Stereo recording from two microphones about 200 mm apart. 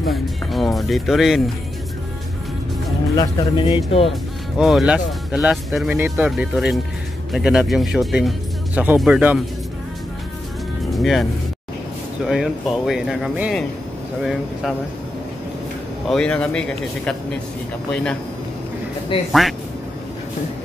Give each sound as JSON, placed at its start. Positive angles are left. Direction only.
{"t": 0.1, "sound": "speech", "side_deg": 0}
{"t": 3.2, "sound": "speech", "side_deg": 20}
{"t": 4.6, "sound": "speech", "side_deg": 0}
{"t": 10.9, "sound": "speech", "side_deg": 0}
{"t": 12.3, "sound": "speech", "side_deg": 0}
{"t": 16.1, "sound": "speech", "side_deg": 5}
{"t": 19.1, "sound": "speech", "side_deg": 25}